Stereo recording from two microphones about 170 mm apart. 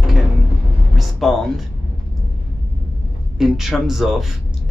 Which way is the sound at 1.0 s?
Centre (ahead or behind).